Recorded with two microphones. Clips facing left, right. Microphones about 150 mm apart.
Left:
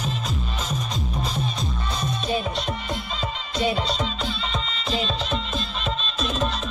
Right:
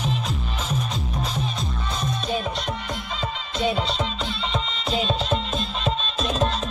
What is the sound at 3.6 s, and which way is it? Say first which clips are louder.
Music: even; centre (ahead or behind).